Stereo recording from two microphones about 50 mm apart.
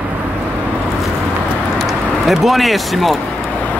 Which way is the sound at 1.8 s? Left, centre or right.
Centre.